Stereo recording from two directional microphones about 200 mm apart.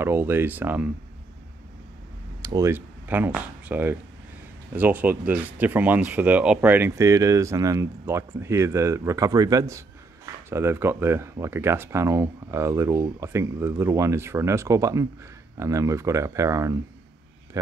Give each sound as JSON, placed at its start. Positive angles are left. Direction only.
{"t": 0.0, "sound": "speech", "side_deg": -10}
{"t": 2.4, "sound": "speech", "side_deg": -15}